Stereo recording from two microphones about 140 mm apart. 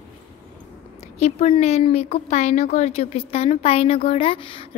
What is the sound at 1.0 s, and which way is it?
A woman's voice, 50° left (ahead or behind).